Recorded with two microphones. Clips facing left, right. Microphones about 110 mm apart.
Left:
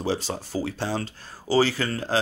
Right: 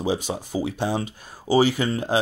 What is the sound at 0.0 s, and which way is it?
Speech, 15° right (ahead or behind).